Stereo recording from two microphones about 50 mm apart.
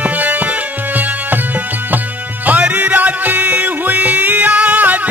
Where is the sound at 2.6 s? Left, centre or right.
Right.